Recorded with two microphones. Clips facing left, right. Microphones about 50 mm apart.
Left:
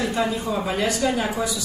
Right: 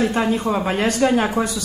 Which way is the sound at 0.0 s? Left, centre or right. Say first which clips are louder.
Right 4 dB; right.